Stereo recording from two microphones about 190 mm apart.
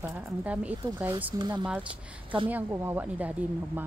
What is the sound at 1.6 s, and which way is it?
A woman's voice, 5° right (ahead or behind).